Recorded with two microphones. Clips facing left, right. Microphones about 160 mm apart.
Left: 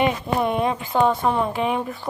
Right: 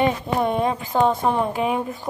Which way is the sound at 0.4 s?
45° right (ahead or behind).